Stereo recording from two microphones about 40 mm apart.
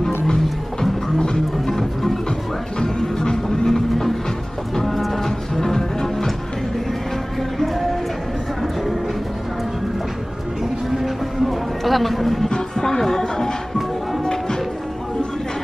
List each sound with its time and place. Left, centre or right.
0.3 s music: centre
1.7 s music: centre
7.5 s music: centre
10.6 s music: centre
11.8 s a sound: centre
12.4 s music: centre